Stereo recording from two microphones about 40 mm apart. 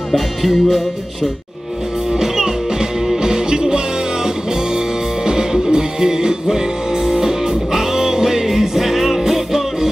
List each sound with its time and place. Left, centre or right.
0.1 s music: centre
2.1 s music: centre